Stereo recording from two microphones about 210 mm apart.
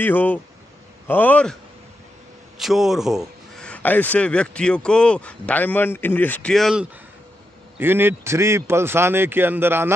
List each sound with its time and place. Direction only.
0.0 s a man's voice: 10° left (ahead or behind); by 9.9 s 10° right (ahead or behind)